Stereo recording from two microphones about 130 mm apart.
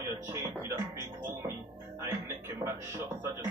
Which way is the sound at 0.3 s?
20° right (ahead or behind).